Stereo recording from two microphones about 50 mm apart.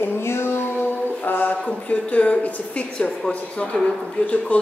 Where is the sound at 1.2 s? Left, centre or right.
Left.